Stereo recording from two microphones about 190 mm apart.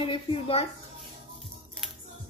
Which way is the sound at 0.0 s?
25° left (ahead or behind).